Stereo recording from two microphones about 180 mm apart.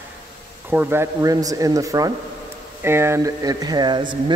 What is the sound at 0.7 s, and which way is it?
Speech, 10° right (ahead or behind).